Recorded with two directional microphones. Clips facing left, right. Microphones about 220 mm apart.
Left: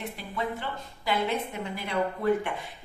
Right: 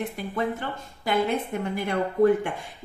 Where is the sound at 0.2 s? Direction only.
50° right (ahead or behind).